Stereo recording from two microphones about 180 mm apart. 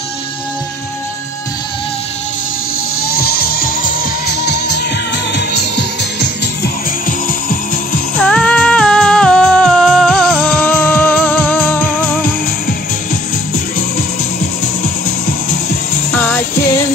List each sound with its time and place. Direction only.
3.1 s music: 55° left (ahead or behind)
4.5 s music: 70° left (ahead or behind)
8.2 s music: 5° left (ahead or behind)
16.1 s music: 10° left (ahead or behind)